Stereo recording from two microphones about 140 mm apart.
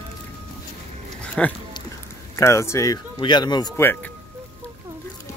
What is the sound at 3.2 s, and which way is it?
Speech, 35° left (ahead or behind).